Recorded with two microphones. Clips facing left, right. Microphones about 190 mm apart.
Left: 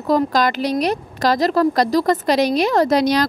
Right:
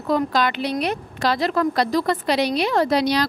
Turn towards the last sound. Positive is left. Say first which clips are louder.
# left 3 dB
turn(degrees=45)  # may be behind; listen again after turning